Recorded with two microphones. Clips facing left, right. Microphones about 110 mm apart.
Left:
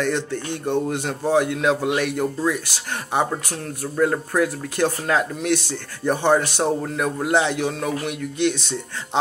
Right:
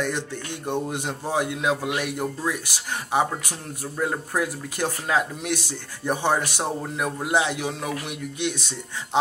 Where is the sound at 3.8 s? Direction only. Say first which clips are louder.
Left 6 dB; 10° right (ahead or behind).